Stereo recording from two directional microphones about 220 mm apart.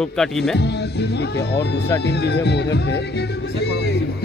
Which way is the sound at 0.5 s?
50° left (ahead or behind).